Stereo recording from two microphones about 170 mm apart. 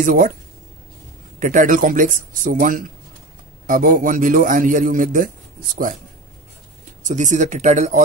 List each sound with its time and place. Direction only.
0.0 s a man's voice: 50° right (ahead or behind)
1.4 s a man's voice: 50° right (ahead or behind)
7.1 s a man's voice: 45° right (ahead or behind)